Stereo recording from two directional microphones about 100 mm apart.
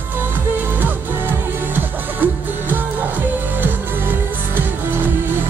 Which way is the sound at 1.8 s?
20° right (ahead or behind).